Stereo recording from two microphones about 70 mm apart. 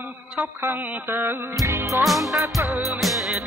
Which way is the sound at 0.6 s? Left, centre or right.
Right.